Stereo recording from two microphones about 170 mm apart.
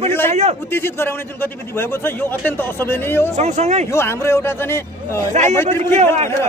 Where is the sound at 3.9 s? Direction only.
15° left (ahead or behind).